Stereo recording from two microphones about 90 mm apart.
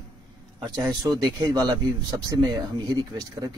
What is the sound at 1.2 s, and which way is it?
A man's voice, 45° right (ahead or behind).